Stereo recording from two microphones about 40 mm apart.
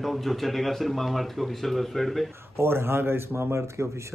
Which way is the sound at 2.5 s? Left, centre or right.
Right.